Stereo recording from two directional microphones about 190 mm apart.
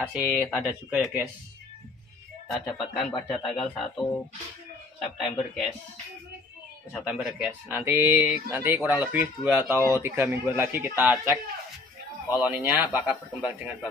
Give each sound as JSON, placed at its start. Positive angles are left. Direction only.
{"t": 0.0, "sound": "speech", "side_deg": -5}
{"t": 0.4, "sound": "speech", "side_deg": 15}
{"t": 0.7, "sound": "speech", "side_deg": -5}
{"t": 2.5, "sound": "speech", "side_deg": 0}
{"t": 5.0, "sound": "speech", "side_deg": 0}
{"t": 6.9, "sound": "speech", "side_deg": 0}
{"t": 9.8, "sound": "speech", "side_deg": 20}
{"t": 10.0, "sound": "speech", "side_deg": -10}
{"t": 12.4, "sound": "speech", "side_deg": -10}